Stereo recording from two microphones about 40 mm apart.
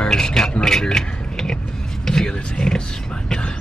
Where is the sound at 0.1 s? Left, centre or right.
Centre.